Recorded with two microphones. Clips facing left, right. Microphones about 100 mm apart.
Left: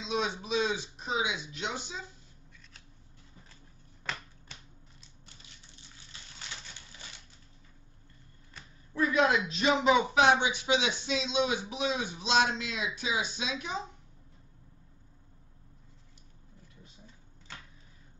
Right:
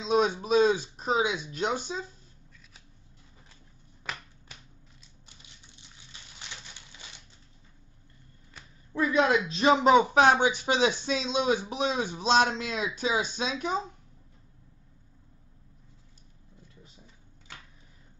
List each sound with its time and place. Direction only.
0.0 s a sound: 40° right (ahead or behind)
4.0 s finger snapping: 10° right (ahead or behind)
8.9 s speech: 25° right (ahead or behind); by 13.7 s 45° right (ahead or behind)